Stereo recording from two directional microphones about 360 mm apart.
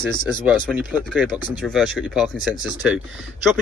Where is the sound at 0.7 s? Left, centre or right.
Centre.